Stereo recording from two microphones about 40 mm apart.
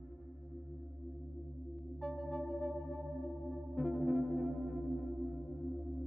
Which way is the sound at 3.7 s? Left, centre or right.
Centre.